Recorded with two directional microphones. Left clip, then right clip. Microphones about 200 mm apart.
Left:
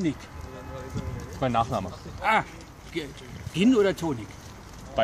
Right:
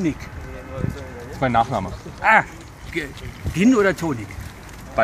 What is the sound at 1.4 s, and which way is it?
Speech, 10° left (ahead or behind).